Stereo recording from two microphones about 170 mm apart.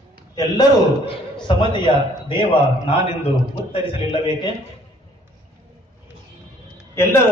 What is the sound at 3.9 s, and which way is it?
Speech, 30° left (ahead or behind).